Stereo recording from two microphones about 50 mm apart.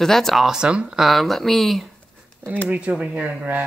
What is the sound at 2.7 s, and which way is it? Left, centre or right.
Speech, right.